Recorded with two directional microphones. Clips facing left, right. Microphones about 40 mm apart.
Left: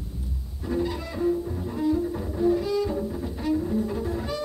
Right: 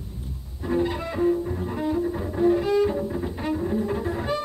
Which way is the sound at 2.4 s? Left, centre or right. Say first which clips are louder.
Right 3 dB; right.